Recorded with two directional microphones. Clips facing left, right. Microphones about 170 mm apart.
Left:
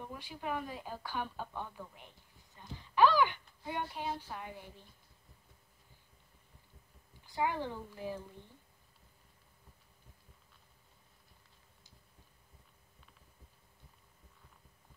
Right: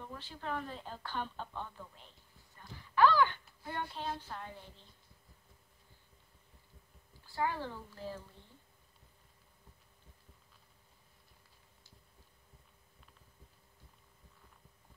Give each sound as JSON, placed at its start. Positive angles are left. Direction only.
{"t": 0.0, "sound": "speech", "side_deg": 10}
{"t": 7.2, "sound": "a woman's voice", "side_deg": 15}